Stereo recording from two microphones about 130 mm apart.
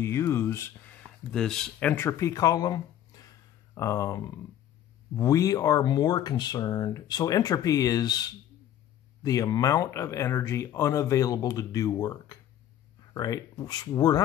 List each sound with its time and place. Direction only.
0.0 s speech: 20° left (ahead or behind)